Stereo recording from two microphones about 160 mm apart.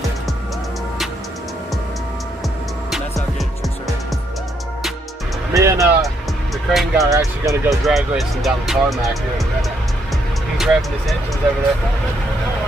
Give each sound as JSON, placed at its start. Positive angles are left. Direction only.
{"t": 2.9, "sound": "music", "side_deg": 0}
{"t": 5.5, "sound": "music", "side_deg": -20}
{"t": 6.7, "sound": "speech", "side_deg": 0}
{"t": 7.1, "sound": "speech", "side_deg": -20}
{"t": 7.8, "sound": "speech", "side_deg": 0}